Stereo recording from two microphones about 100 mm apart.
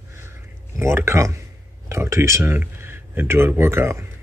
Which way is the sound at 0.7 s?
25° right (ahead or behind).